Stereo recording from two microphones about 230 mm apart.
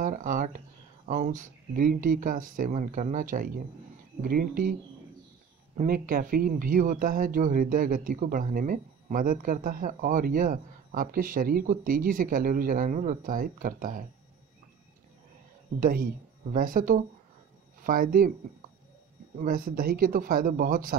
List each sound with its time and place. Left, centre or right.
0.0 s speech: right
5.8 s speech: right
15.8 s speech: right
19.4 s speech: right